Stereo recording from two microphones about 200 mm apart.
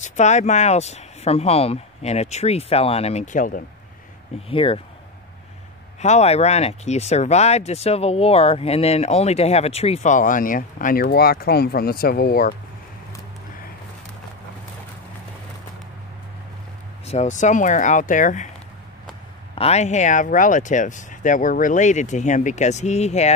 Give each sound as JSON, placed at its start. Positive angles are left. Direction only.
{"t": 0.0, "sound": "speech", "side_deg": 35}
{"t": 4.5, "sound": "speech", "side_deg": 25}
{"t": 5.9, "sound": "speech", "side_deg": 35}
{"t": 17.0, "sound": "speech", "side_deg": 35}
{"t": 19.5, "sound": "speech", "side_deg": 30}